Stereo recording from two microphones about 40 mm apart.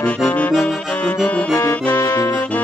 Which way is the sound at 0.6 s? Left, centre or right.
Centre.